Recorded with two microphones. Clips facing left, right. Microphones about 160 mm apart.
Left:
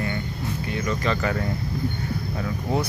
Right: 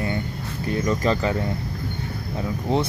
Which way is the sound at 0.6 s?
40° right (ahead or behind).